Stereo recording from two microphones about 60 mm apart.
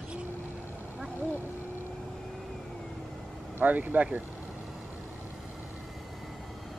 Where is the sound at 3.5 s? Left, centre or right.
Right.